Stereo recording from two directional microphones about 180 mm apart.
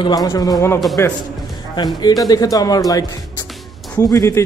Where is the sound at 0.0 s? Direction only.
25° left (ahead or behind).